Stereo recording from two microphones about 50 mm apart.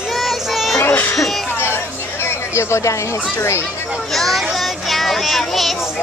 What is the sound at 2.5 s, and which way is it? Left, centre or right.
Speech, left.